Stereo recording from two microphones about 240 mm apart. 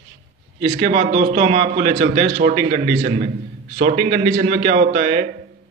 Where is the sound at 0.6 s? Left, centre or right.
Right.